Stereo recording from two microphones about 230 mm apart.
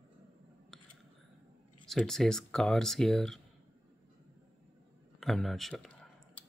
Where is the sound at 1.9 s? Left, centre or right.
Centre.